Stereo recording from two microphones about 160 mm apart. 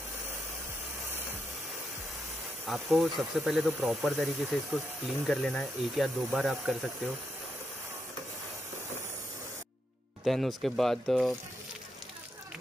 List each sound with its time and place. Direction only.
2.7 s speech: centre (ahead or behind)
10.2 s speech: centre (ahead or behind)